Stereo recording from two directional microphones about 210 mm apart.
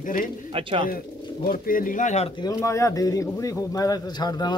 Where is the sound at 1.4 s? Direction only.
40° left (ahead or behind).